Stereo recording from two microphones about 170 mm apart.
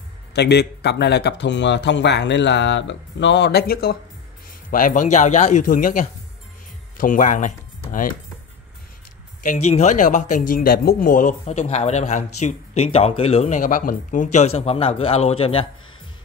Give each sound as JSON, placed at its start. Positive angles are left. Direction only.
{"t": 0.3, "sound": "speech", "side_deg": 75}
{"t": 9.4, "sound": "speech", "side_deg": 45}